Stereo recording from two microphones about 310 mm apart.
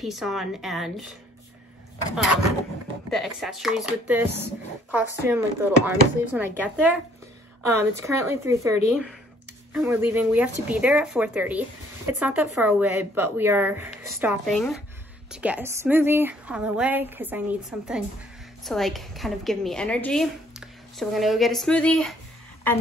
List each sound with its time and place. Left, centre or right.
0.0 s a woman's voice: centre
3.1 s a woman's voice: centre